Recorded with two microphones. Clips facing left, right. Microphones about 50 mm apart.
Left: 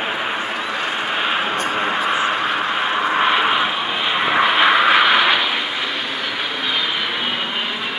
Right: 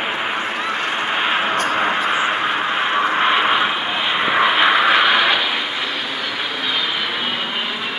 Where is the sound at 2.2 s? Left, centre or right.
Centre.